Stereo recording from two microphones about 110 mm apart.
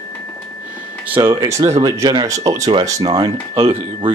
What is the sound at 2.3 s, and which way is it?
Speech, 30° right (ahead or behind).